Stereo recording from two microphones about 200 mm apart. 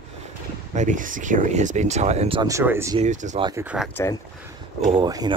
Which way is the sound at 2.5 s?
10° right (ahead or behind).